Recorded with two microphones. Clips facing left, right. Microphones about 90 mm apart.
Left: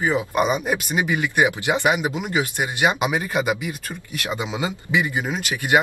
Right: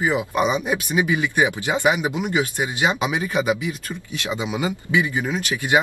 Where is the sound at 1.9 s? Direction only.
5° left (ahead or behind).